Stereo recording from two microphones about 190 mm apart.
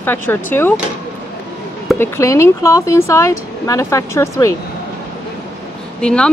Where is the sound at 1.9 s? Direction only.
15° left (ahead or behind).